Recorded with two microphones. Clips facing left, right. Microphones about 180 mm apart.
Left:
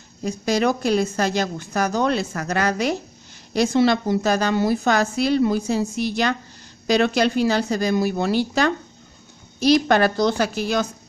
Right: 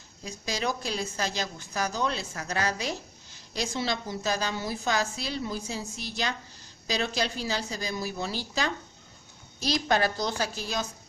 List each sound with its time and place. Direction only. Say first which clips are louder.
0.2 s a woman's voice: left 12 dB; 65° left (ahead or behind)